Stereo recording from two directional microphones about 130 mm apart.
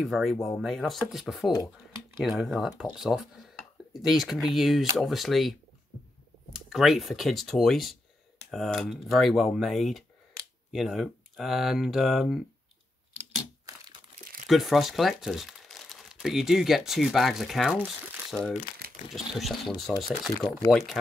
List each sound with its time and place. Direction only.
0.0 s speech: centre (ahead or behind)
13.7 s crumpling: 30° right (ahead or behind)
14.5 s speech: centre (ahead or behind)
20.3 s speech: 20° left (ahead or behind)
20.7 s speech: centre (ahead or behind)